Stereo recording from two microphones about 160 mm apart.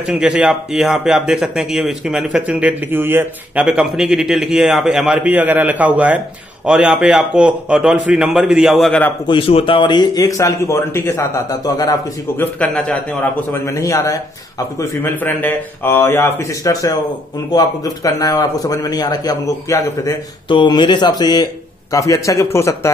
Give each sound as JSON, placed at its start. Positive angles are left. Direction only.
{"t": 0.0, "sound": "speech", "side_deg": -5}
{"t": 9.3, "sound": "speech", "side_deg": 35}
{"t": 12.5, "sound": "a man's voice", "side_deg": 10}
{"t": 13.5, "sound": "a man's voice", "side_deg": 20}